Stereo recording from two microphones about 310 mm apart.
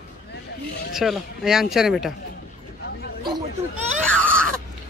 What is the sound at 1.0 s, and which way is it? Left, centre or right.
Speech, centre.